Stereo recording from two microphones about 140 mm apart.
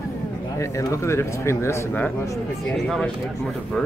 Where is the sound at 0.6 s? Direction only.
20° left (ahead or behind).